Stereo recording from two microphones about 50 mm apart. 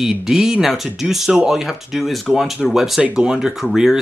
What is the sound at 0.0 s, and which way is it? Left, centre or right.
Speech, centre.